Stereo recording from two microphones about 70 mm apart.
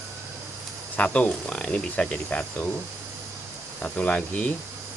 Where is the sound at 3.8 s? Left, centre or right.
Centre.